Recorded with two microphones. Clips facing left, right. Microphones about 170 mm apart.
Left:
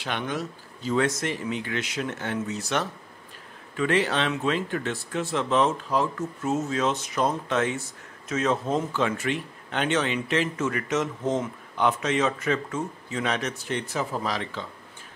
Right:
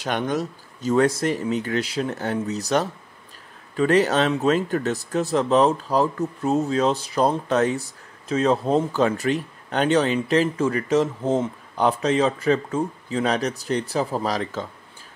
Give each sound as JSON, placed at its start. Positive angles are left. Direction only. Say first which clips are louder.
{"t": 0.0, "sound": "speech", "louder": "right 6 dB", "side_deg": -40}